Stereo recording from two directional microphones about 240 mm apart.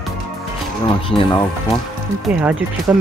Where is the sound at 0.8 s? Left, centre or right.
Left.